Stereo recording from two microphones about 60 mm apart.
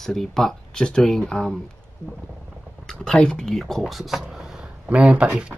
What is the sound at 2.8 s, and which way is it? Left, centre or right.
Speech, centre.